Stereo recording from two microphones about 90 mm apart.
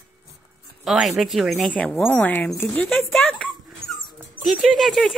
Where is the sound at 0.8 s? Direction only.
5° right (ahead or behind).